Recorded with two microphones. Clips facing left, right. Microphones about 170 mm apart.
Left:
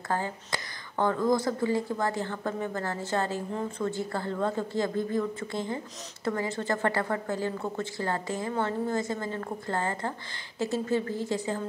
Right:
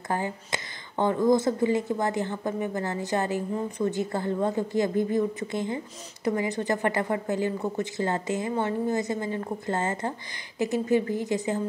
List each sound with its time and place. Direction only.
0.1 s a woman's voice: 20° right (ahead or behind)